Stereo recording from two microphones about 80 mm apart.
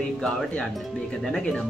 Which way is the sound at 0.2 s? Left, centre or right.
Centre.